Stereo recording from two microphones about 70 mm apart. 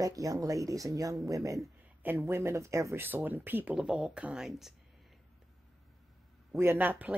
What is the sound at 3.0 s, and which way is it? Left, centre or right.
Speech, right.